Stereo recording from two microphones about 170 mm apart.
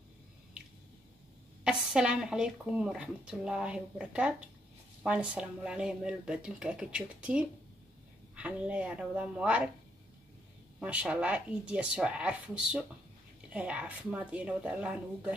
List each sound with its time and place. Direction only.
1.6 s speech: 5° right (ahead or behind)
10.8 s speech: 5° right (ahead or behind)